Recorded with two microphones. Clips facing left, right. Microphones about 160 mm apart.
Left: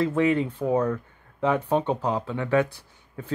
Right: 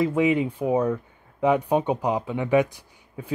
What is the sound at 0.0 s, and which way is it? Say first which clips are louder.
Speech: right 1 dB; 15° right (ahead or behind).